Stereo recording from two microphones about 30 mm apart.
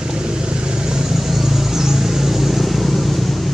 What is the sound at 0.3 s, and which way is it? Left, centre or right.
Vehicle, right.